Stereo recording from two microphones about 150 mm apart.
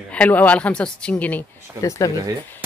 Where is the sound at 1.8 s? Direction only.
20° left (ahead or behind).